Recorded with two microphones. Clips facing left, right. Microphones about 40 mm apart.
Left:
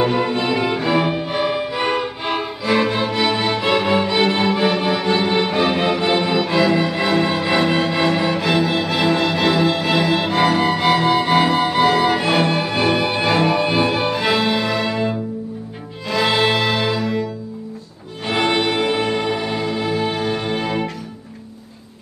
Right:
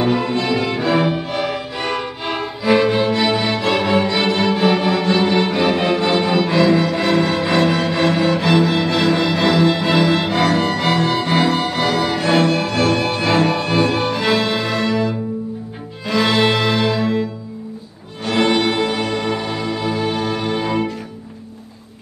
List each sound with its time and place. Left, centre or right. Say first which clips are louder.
0.4 s music: even; centre
0.7 s music: right 1 dB; centre
1.4 s music: left 3 dB; centre
6.0 s music: right 1 dB; centre
16.2 s music: right 1 dB; centre
18.3 s music: right 2 dB; centre